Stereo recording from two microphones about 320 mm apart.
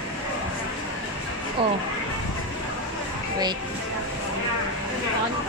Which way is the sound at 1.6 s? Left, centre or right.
Centre.